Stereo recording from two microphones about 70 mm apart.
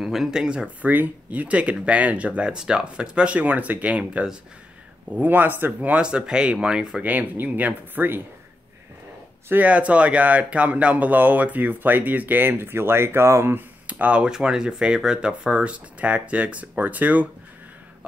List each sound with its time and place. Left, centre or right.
0.0 s speech: centre
0.8 s speech: right
5.1 s speech: right
5.8 s speech: centre
7.0 s speech: right
9.5 s speech: right
13.8 s speech: right